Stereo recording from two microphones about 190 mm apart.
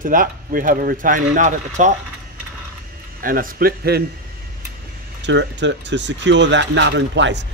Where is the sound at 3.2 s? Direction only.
50° right (ahead or behind).